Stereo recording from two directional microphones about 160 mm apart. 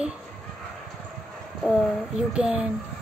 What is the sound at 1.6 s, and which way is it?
Speech, 5° right (ahead or behind).